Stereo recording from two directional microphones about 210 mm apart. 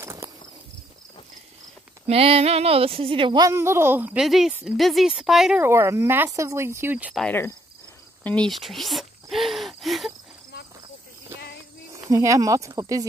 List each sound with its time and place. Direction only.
0.0 s a sound: 15° right (ahead or behind)
2.0 s a woman's voice: 30° right (ahead or behind); by 7.2 s 5° right (ahead or behind)
7.2 s cricket: 10° left (ahead or behind)
8.2 s gasp: 5° left (ahead or behind)
12.1 s a woman's voice: 15° right (ahead or behind)